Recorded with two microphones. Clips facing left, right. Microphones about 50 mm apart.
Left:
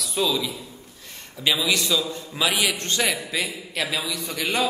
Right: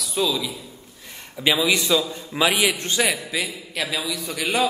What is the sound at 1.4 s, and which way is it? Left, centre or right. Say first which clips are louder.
A man's voice: right 3 dB; centre.